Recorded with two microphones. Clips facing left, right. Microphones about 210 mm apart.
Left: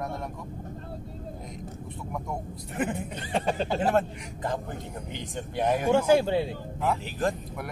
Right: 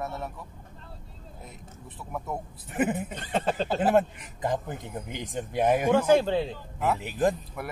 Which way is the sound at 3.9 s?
15° right (ahead or behind).